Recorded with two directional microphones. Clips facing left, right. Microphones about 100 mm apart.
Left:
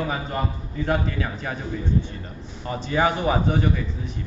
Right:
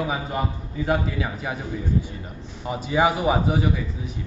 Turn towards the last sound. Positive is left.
turn(degrees=-10)  # may be behind; listen again after turning